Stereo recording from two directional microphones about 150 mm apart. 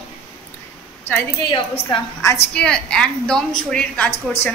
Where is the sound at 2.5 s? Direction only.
5° left (ahead or behind).